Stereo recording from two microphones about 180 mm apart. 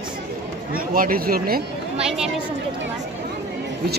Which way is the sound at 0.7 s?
50° right (ahead or behind).